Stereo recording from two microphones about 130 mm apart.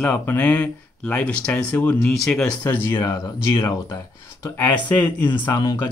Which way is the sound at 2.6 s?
20° left (ahead or behind).